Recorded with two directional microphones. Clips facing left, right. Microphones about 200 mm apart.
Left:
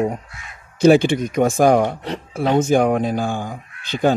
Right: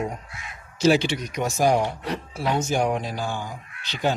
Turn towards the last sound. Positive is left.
turn(degrees=50)  # may be behind; listen again after turning